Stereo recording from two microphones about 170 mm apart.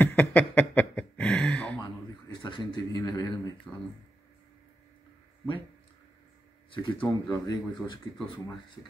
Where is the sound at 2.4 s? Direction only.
25° left (ahead or behind).